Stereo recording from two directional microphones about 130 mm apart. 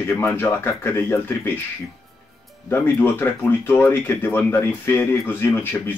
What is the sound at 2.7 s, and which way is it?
Speech, 15° left (ahead or behind).